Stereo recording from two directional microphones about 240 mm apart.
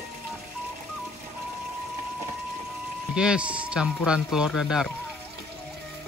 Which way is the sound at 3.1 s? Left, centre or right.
Centre.